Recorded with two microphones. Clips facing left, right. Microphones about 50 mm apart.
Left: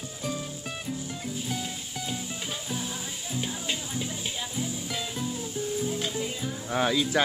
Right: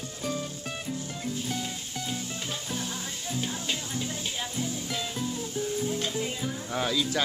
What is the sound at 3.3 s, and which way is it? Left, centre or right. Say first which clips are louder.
Music: even; centre.